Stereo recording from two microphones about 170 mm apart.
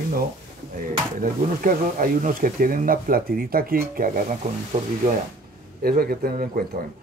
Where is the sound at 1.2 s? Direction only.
55° right (ahead or behind).